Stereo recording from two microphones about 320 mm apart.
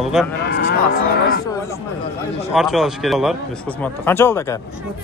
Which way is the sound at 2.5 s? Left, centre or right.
Centre.